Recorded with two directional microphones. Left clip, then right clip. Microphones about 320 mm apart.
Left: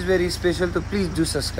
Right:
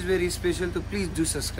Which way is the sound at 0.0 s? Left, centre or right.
Centre.